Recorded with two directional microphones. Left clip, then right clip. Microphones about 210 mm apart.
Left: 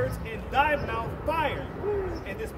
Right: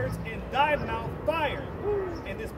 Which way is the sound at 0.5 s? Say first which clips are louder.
Left 1 dB; 20° left (ahead or behind).